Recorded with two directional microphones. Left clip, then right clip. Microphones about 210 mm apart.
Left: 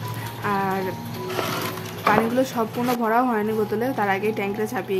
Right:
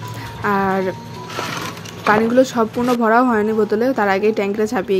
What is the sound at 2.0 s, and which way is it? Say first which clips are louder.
A woman's voice: right 6 dB; 15° right (ahead or behind).